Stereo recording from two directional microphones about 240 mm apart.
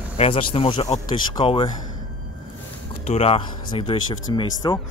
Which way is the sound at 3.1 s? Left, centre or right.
Left.